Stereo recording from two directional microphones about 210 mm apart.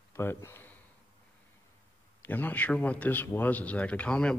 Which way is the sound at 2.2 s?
10° left (ahead or behind).